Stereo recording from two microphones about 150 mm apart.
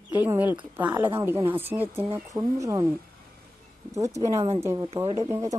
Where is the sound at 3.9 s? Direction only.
20° right (ahead or behind).